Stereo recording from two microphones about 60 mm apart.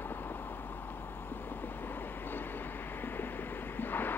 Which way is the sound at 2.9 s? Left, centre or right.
Left.